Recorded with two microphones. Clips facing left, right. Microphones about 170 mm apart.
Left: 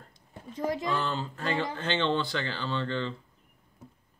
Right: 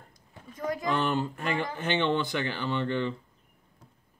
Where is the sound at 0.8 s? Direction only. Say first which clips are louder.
Right 3 dB; 20° right (ahead or behind).